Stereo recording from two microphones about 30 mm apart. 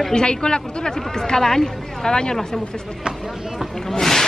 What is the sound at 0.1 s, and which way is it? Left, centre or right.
Speech, left.